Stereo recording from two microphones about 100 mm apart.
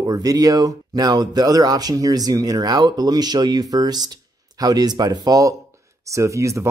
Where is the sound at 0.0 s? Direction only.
40° right (ahead or behind).